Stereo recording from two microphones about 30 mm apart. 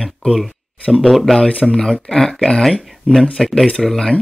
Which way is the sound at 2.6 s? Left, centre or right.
Centre.